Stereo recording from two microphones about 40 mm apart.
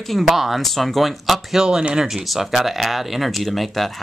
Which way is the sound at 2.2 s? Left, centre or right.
Centre.